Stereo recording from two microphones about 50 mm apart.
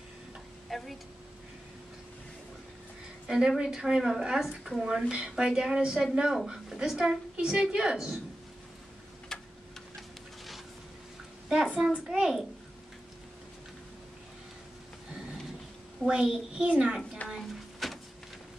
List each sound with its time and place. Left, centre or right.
0.7 s speech: centre
3.3 s a woman's voice: centre
9.3 s tick-tock: centre
11.4 s a woman's voice: centre
16.1 s a child's voice: centre
17.4 s a sound: centre